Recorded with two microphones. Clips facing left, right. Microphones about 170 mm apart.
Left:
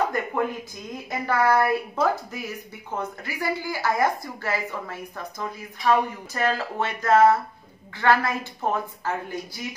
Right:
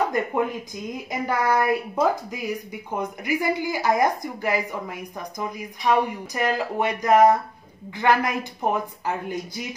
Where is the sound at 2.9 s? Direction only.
15° right (ahead or behind).